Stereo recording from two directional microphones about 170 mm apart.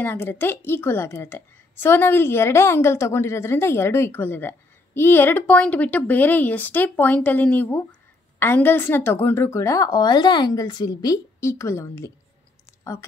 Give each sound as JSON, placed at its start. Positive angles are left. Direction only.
{"t": 0.0, "sound": "a woman's voice", "side_deg": 10}